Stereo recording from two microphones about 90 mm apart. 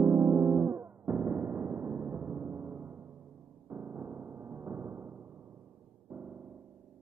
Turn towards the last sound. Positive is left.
turn(degrees=-20)  # may be behind; listen again after turning